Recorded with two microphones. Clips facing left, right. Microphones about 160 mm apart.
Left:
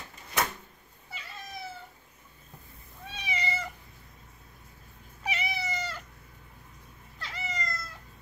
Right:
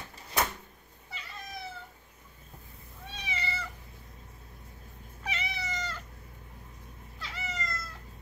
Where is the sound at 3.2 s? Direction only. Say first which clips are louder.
Left 4 dB; 15° left (ahead or behind).